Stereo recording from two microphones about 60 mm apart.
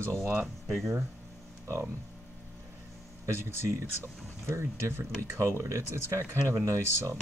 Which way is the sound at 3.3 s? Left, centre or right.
Right.